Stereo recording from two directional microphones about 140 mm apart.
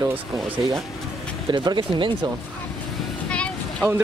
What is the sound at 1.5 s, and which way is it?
Speech, 30° right (ahead or behind).